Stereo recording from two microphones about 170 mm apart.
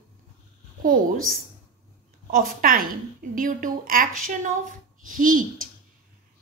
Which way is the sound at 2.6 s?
55° right (ahead or behind).